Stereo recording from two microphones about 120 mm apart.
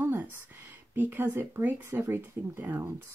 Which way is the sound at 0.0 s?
15° right (ahead or behind).